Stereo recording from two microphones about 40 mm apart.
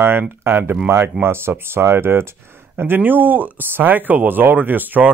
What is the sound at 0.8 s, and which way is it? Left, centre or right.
Speech, right.